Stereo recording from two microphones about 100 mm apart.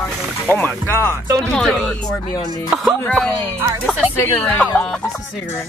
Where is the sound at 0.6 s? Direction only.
25° left (ahead or behind).